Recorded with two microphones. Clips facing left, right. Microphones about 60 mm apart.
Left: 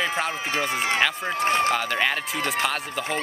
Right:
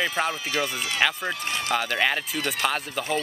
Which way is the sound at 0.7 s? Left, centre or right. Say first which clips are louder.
Left 2 dB; left.